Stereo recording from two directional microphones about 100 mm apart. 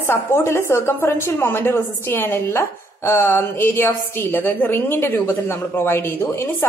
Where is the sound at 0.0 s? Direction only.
25° left (ahead or behind).